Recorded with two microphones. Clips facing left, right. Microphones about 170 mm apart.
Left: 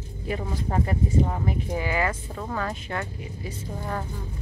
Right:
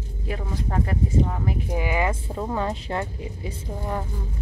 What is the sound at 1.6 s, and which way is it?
Speech, 15° right (ahead or behind).